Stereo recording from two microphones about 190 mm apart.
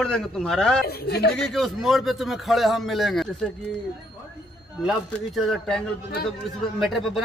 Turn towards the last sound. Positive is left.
turn(degrees=0)  # may be behind; listen again after turning